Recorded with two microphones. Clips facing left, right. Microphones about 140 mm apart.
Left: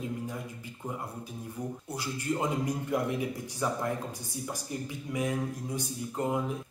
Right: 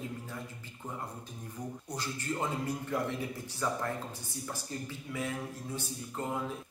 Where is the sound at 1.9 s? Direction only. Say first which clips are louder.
Left 4 dB; 10° left (ahead or behind).